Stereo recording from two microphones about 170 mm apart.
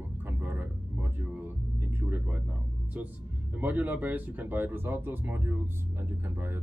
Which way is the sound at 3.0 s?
10° right (ahead or behind).